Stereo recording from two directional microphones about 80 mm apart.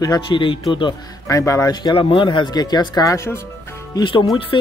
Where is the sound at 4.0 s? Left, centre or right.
Left.